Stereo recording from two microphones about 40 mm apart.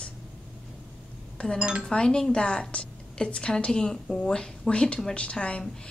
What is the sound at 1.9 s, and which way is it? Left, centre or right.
A woman's voice, centre.